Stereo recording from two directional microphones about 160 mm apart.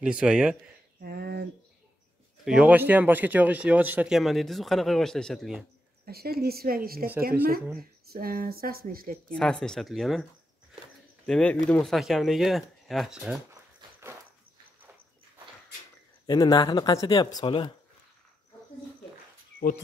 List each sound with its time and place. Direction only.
0.0 s speech: 5° right (ahead or behind)
1.0 s speech: 80° right
2.4 s speech: 5° right (ahead or behind)
6.0 s speech: 70° right (ahead or behind)
8.1 s speech: 65° right (ahead or behind)
9.3 s speech: 5° left (ahead or behind)
11.2 s speech: 5° left (ahead or behind)
16.3 s speech: 25° left (ahead or behind)